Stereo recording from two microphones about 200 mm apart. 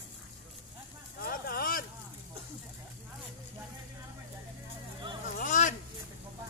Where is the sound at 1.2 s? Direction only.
50° left (ahead or behind).